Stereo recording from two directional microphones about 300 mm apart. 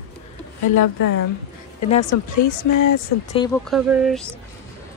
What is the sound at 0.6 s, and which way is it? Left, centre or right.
Speech, left.